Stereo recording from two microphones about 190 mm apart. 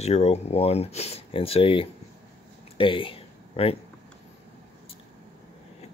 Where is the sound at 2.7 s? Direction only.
25° left (ahead or behind).